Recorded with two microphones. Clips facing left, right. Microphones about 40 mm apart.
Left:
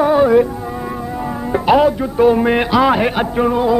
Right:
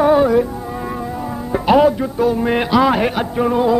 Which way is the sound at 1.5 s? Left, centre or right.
Centre.